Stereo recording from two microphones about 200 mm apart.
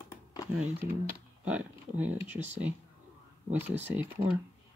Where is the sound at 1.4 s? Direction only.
5° right (ahead or behind).